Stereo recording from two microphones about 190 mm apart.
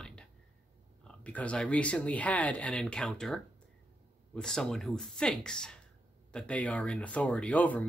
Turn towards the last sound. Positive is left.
turn(degrees=10)  # may be behind; listen again after turning